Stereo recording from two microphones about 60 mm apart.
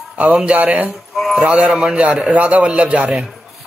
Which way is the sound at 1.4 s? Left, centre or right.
Centre.